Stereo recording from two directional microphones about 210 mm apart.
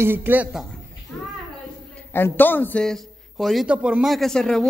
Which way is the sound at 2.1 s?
10° left (ahead or behind).